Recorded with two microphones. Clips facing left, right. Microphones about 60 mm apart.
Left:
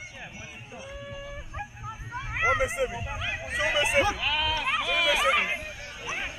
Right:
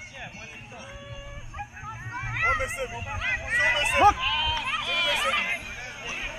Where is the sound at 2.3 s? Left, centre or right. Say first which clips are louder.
Left 1 dB; centre.